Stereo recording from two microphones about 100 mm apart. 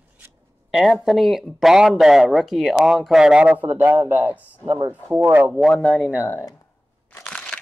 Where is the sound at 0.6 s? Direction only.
5° right (ahead or behind).